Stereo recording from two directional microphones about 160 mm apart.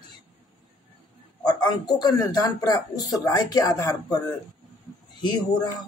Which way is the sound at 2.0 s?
25° left (ahead or behind).